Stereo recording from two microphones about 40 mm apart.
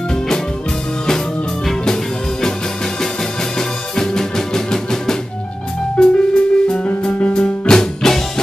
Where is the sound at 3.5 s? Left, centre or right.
Centre.